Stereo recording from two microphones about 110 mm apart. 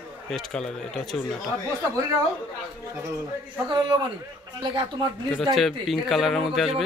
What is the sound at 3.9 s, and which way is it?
Speech, 45° right (ahead or behind).